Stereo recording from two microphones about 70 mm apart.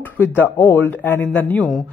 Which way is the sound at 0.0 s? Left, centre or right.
Left.